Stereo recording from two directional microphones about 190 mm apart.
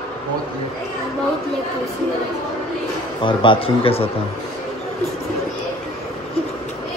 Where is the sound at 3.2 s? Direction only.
25° left (ahead or behind).